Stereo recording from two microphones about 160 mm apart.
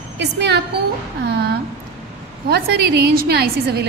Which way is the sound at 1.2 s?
90° right.